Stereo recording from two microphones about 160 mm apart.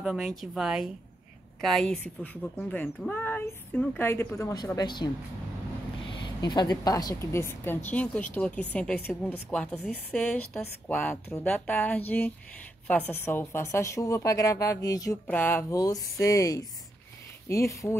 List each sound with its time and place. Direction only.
0.0 s a woman's voice: centre (ahead or behind); by 5.1 s 25° left (ahead or behind)
6.2 s speech: 25° left (ahead or behind)